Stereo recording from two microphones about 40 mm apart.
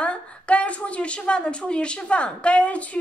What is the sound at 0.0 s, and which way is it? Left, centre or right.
A woman's voice, left.